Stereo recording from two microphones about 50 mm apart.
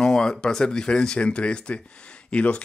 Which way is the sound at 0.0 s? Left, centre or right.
Centre.